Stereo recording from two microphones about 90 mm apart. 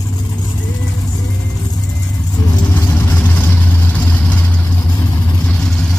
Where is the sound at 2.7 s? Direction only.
25° left (ahead or behind).